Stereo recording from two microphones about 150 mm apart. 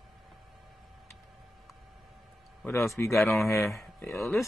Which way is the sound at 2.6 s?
20° left (ahead or behind).